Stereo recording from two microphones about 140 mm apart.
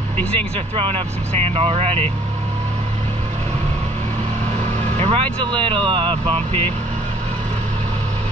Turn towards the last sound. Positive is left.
turn(degrees=-45)  # may be behind; listen again after turning